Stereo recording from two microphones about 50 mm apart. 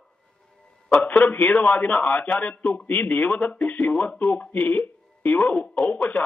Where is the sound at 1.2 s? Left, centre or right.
Left.